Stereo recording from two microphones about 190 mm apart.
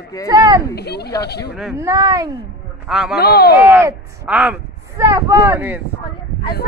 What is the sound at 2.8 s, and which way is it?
Speech, 5° right (ahead or behind).